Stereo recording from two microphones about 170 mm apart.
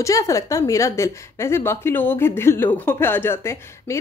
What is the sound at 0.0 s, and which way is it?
Speech, 20° left (ahead or behind).